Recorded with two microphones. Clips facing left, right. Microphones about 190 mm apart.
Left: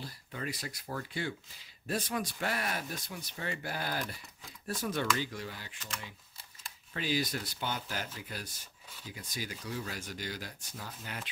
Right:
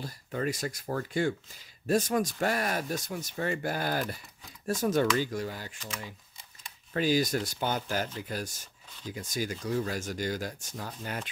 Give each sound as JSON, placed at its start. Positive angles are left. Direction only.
{"t": 0.0, "sound": "speech", "side_deg": -45}
{"t": 6.9, "sound": "speech", "side_deg": -45}